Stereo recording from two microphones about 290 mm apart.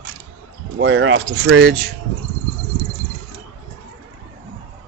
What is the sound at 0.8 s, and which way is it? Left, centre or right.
Speech, right.